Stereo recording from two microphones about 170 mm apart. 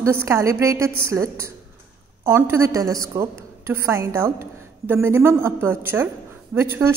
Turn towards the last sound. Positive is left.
turn(degrees=-15)  # may be behind; listen again after turning